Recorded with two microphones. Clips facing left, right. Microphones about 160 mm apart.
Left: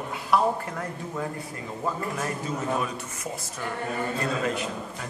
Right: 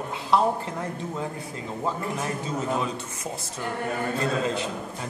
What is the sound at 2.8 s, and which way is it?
Speech, 25° right (ahead or behind).